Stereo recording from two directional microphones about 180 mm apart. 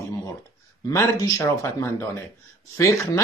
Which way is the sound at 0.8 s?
20° left (ahead or behind).